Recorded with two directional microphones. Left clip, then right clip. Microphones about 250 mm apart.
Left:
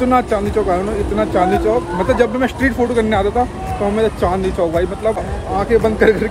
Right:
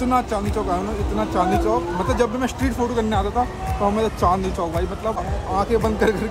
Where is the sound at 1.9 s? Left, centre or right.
Centre.